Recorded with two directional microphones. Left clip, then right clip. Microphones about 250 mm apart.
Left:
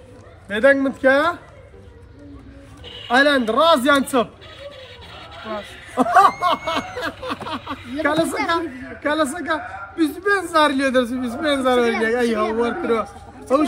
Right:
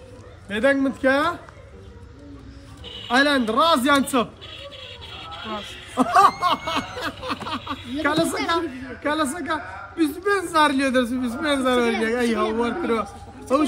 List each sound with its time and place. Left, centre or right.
0.5 s a man's voice: centre
3.1 s a man's voice: centre
4.6 s a sound: centre
5.5 s a man's voice: centre
7.2 s a sound: centre
8.0 s a man's voice: centre